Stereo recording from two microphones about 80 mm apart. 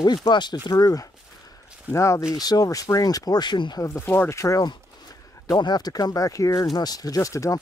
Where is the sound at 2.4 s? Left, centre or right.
Left.